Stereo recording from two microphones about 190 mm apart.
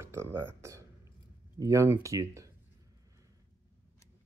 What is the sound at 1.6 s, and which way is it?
Speech, 15° right (ahead or behind).